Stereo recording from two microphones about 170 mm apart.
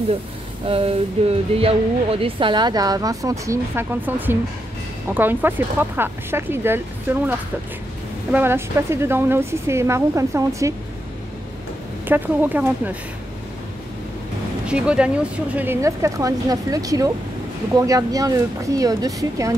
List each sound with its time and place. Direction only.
0.7 s speech: 35° right (ahead or behind); by 10.7 s 15° right (ahead or behind)
12.1 s speech: 10° right (ahead or behind)
14.7 s speech: 5° right (ahead or behind)